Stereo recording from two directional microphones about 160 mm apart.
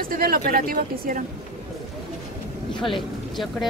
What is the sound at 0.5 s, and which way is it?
Speech, 65° right (ahead or behind).